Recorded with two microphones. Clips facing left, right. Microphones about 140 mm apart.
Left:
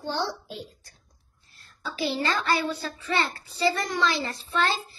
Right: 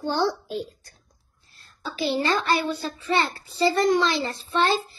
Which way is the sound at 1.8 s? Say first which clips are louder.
Right 3 dB; 25° right (ahead or behind).